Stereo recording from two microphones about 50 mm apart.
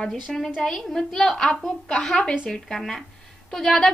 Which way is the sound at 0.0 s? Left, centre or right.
Centre.